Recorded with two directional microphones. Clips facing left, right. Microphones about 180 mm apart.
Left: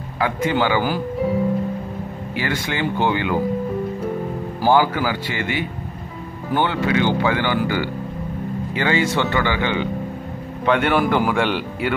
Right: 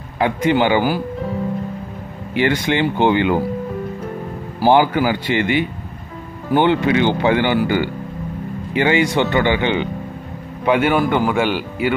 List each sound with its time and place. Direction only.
0.2 s speech: 20° right (ahead or behind)
2.3 s speech: 20° right (ahead or behind)
4.6 s speech: 20° right (ahead or behind)
10.6 s speech: 5° right (ahead or behind)